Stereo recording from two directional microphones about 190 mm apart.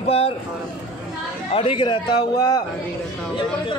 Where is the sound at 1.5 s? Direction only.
30° left (ahead or behind).